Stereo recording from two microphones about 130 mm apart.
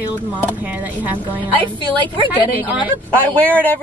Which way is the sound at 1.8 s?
35° right (ahead or behind).